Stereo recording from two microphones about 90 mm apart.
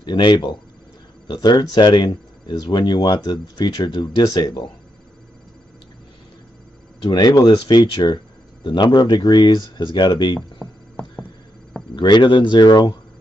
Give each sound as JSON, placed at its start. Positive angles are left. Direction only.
{"t": 0.0, "sound": "speech", "side_deg": 55}
{"t": 7.0, "sound": "speech", "side_deg": 50}
{"t": 11.9, "sound": "speech", "side_deg": 55}